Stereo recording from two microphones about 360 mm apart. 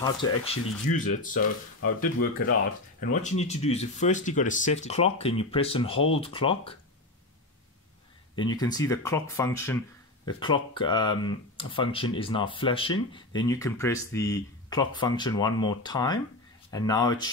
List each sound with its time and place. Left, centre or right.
0.0 s speech: centre; by 3.2 s left
3.2 s speech: centre
8.4 s speech: centre